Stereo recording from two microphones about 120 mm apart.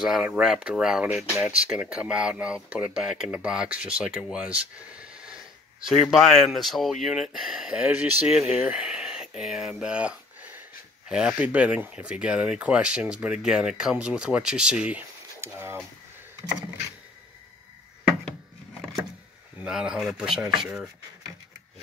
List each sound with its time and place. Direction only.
0.0 s speech: 5° right (ahead or behind)
8.3 s speech: 60° left (ahead or behind)
8.5 s speech: 10° right (ahead or behind)
19.6 s speech: 5° right (ahead or behind)